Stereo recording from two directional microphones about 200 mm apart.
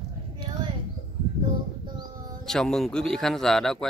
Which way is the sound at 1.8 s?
20° right (ahead or behind).